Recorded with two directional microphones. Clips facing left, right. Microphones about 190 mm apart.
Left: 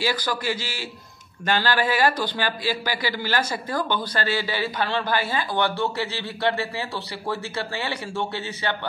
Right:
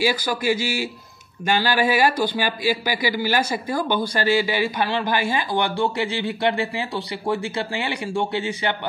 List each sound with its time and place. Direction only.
0.0 s a man's voice: 10° right (ahead or behind)